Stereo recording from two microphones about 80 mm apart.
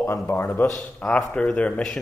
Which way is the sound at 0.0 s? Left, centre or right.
Left.